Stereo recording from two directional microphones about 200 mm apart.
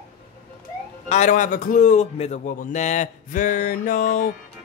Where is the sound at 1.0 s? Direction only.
35° left (ahead or behind).